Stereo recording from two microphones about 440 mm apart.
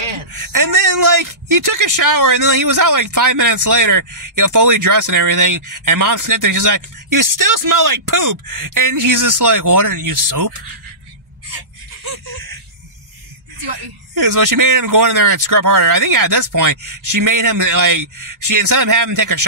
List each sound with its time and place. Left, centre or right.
0.3 s speech: right
12.0 s a sound: right
14.1 s speech: right